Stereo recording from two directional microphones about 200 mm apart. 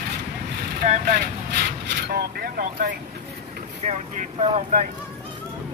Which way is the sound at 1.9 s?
50° right (ahead or behind).